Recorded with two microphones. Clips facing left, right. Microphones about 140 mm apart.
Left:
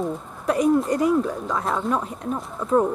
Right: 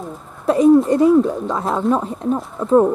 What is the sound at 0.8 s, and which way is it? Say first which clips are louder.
Speech: right 7 dB; 25° right (ahead or behind).